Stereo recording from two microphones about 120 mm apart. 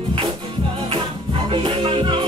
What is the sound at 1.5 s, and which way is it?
Music, 45° right (ahead or behind).